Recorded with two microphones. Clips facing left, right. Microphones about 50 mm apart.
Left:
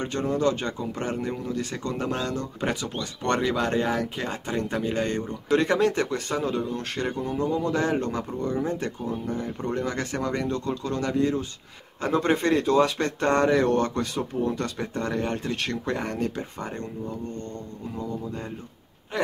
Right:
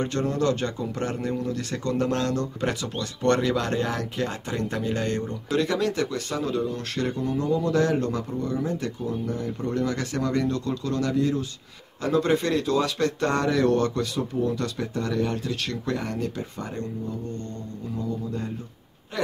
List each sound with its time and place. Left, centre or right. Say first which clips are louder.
0.0 s speech: even; centre